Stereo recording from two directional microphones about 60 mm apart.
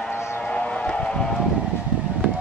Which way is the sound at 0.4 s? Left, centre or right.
Centre.